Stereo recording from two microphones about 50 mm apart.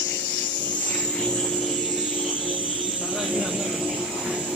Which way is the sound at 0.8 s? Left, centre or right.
Left.